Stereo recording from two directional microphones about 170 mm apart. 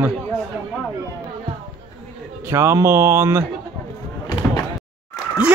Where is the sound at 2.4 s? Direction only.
15° right (ahead or behind).